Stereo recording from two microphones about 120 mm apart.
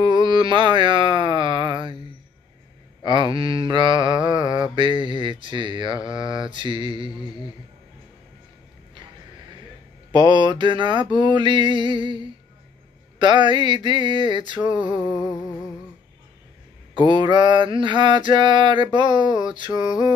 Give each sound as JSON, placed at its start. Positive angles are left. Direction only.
{"t": 0.0, "sound": "a sound", "side_deg": -40}
{"t": 3.0, "sound": "speech", "side_deg": -40}
{"t": 3.3, "sound": "mantra", "side_deg": -45}
{"t": 10.1, "sound": "mantra", "side_deg": -40}
{"t": 15.0, "sound": "humming", "side_deg": 35}
{"t": 17.1, "sound": "mantra", "side_deg": -40}